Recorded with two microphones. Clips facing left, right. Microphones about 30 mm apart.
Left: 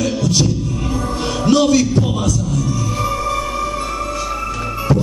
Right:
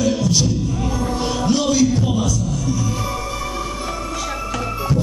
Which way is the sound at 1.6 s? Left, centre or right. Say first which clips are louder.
Left 3 dB; left.